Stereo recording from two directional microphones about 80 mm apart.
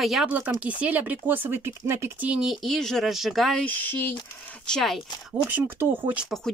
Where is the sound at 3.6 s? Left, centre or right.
Left.